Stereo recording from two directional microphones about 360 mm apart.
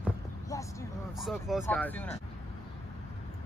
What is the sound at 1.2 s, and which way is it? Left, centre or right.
Speech, centre.